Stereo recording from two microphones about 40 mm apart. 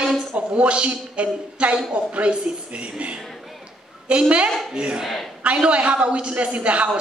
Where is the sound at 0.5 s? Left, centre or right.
Right.